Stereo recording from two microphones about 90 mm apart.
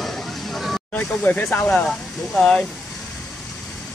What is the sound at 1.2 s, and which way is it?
Speech, 20° left (ahead or behind).